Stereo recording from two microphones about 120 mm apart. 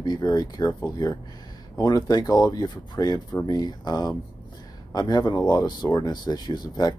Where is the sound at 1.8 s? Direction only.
30° left (ahead or behind).